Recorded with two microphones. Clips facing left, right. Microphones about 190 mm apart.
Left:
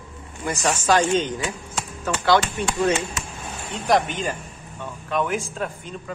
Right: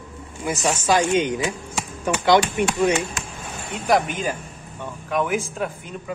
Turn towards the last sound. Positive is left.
turn(degrees=-10)  # may be behind; listen again after turning